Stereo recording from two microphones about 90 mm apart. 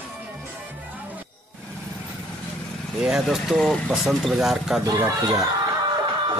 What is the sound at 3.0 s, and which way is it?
Speech, 5° right (ahead or behind).